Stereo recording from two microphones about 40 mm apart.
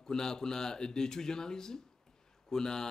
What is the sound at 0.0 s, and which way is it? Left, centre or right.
Speech, centre.